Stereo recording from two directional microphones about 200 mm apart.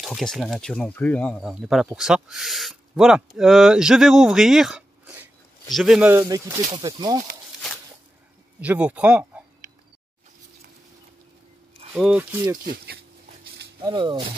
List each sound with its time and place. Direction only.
0.0 s speech: centre (ahead or behind); by 7.2 s 20° right (ahead or behind)
8.5 s speech: 5° right (ahead or behind)
11.9 s speech: 5° right (ahead or behind)
12.6 s speech: 50° right (ahead or behind)
13.8 s speech: 20° right (ahead or behind)